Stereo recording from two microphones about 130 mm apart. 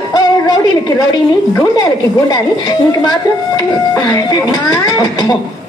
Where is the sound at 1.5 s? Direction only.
30° left (ahead or behind).